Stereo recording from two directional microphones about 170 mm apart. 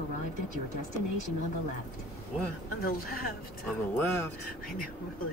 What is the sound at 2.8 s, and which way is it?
Speech, 60° left (ahead or behind).